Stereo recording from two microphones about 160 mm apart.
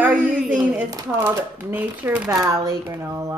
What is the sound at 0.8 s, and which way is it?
Speech, 20° right (ahead or behind).